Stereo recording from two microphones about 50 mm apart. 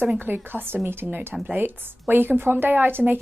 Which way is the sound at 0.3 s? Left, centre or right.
Right.